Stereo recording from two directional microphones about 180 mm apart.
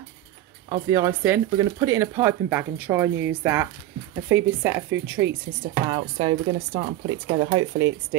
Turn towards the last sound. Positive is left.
turn(degrees=-25)  # may be behind; listen again after turning